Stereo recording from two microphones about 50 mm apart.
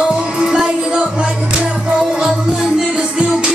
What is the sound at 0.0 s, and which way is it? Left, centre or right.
Music, centre.